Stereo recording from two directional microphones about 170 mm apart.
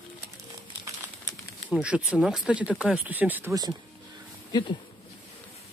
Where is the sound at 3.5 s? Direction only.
25° right (ahead or behind).